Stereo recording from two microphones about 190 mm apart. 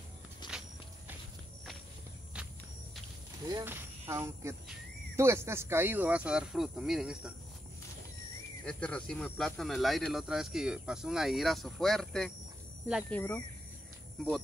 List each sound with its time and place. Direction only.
0.4 s walk: 25° left (ahead or behind)
2.3 s a sound: 5° right (ahead or behind)
3.4 s speech: 15° right (ahead or behind)
8.6 s speech: 5° left (ahead or behind)
13.1 s speech: 15° left (ahead or behind)